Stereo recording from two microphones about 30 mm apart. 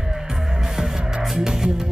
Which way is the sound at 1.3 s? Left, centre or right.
Right.